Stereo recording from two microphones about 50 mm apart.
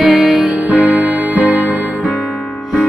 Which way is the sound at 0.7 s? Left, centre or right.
Right.